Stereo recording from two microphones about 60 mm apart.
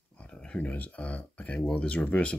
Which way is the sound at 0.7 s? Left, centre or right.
Left.